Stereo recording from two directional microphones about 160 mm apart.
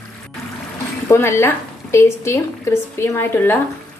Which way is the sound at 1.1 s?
15° left (ahead or behind).